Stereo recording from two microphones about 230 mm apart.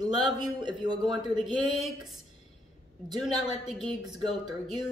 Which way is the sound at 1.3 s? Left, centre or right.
Centre.